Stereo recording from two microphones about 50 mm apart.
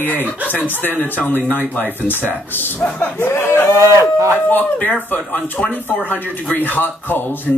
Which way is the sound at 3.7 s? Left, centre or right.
Right.